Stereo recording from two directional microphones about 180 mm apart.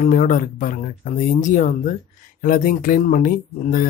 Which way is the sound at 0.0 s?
45° left (ahead or behind).